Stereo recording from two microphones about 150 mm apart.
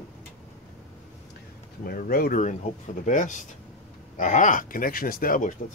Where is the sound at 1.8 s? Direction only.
80° left.